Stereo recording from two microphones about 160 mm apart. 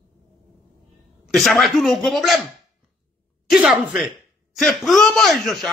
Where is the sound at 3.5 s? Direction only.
5° right (ahead or behind).